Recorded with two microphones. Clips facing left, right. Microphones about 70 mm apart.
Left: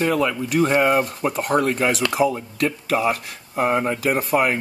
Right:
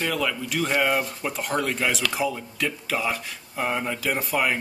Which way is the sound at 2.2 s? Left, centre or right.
Left.